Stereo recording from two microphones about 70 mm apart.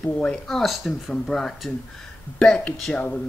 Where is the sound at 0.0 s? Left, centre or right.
Centre.